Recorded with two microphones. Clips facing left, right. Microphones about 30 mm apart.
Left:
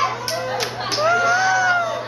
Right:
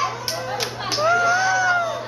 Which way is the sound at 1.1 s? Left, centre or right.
Centre.